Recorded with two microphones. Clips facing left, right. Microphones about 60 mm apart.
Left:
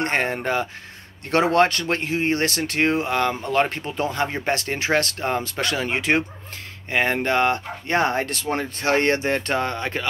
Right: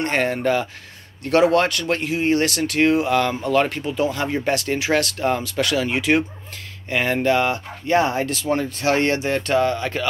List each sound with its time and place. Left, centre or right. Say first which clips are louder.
0.0 s speech: right 2 dB; left
7.2 s speech: right 1 dB; left